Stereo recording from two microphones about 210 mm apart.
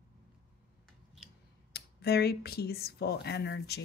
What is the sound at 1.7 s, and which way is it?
Speech, 50° left (ahead or behind).